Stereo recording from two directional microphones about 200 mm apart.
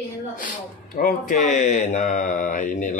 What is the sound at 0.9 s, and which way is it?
Speech, 40° left (ahead or behind).